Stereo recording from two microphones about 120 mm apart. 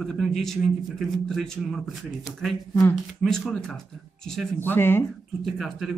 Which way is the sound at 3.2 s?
5° left (ahead or behind).